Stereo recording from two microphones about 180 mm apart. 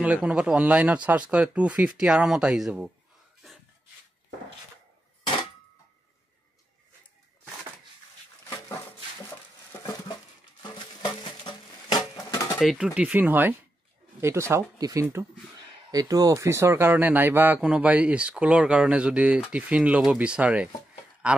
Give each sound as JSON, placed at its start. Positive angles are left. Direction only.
{"t": 0.0, "sound": "speech", "side_deg": -5}
{"t": 10.6, "sound": "a sound", "side_deg": 25}
{"t": 12.5, "sound": "speech", "side_deg": 0}